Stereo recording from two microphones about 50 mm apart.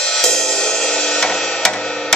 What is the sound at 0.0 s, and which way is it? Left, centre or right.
Music, centre.